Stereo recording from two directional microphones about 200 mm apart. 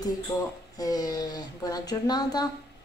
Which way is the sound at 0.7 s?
20° left (ahead or behind).